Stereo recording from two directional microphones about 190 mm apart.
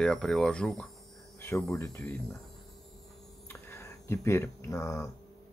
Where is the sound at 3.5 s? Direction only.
15° left (ahead or behind).